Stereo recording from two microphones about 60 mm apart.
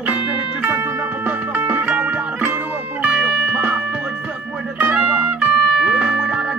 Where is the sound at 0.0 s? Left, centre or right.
Right.